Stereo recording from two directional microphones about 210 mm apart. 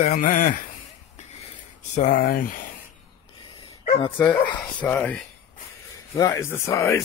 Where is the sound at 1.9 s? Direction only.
40° left (ahead or behind).